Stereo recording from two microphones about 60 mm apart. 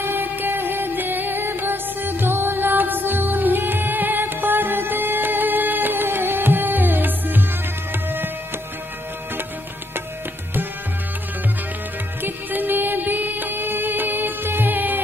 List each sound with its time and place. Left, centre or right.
0.0 s music: right
12.2 s music: right